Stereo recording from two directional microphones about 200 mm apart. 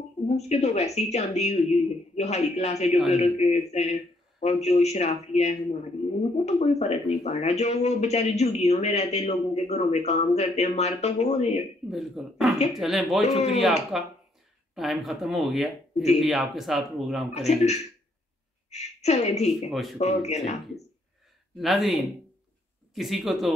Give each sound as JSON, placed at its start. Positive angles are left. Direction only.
{"t": 0.4, "sound": "a man's voice", "side_deg": 35}
{"t": 11.9, "sound": "speech", "side_deg": 0}
{"t": 13.2, "sound": "a man's voice", "side_deg": 35}
{"t": 13.9, "sound": "speech", "side_deg": 0}
{"t": 17.3, "sound": "a man's voice", "side_deg": 35}
{"t": 19.7, "sound": "speech", "side_deg": 0}
{"t": 20.0, "sound": "a man's voice", "side_deg": 35}
{"t": 21.5, "sound": "speech", "side_deg": 0}